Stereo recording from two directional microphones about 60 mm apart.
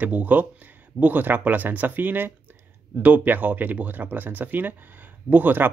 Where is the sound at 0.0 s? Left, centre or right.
Right.